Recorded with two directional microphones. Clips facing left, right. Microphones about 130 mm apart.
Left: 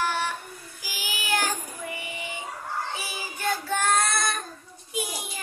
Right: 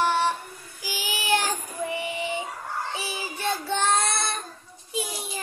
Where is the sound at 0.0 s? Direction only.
30° right (ahead or behind).